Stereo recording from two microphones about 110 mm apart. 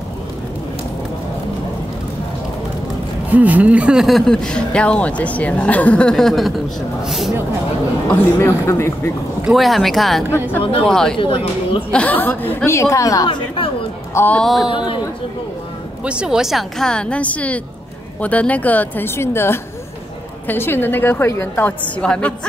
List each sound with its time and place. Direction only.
3.3 s speech: 15° right (ahead or behind)
8.1 s a woman's voice: 20° left (ahead or behind)
9.5 s speech: centre (ahead or behind)
11.1 s speech: 50° left (ahead or behind)
11.9 s a woman's voice: 15° left (ahead or behind); by 13.3 s 30° left (ahead or behind)
14.1 s speech: 15° left (ahead or behind)
14.4 s speech: centre (ahead or behind)
16.0 s a woman's voice: 10° right (ahead or behind); by 21.7 s 20° left (ahead or behind)
22.0 s speech: 10° left (ahead or behind)